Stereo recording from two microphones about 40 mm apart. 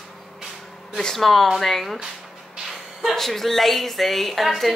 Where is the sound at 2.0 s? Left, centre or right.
Centre.